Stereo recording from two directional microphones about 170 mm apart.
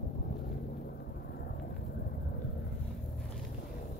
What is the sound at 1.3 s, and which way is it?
Vehicle, 70° left (ahead or behind).